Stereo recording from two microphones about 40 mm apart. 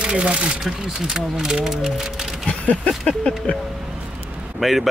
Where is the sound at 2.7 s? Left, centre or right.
Left.